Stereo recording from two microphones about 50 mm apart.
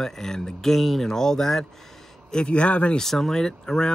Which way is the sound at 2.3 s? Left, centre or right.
Centre.